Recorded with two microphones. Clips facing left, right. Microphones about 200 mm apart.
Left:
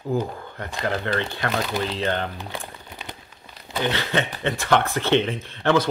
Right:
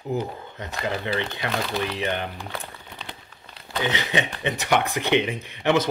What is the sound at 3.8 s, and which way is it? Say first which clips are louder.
Speech: left 1 dB; 20° right (ahead or behind).